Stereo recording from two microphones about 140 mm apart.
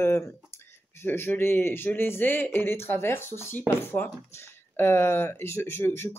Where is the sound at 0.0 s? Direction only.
20° left (ahead or behind).